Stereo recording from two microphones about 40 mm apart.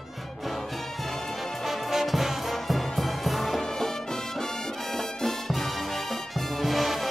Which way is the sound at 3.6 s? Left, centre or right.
Centre.